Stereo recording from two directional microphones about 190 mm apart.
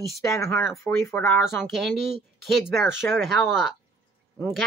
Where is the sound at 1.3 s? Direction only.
Centre (ahead or behind).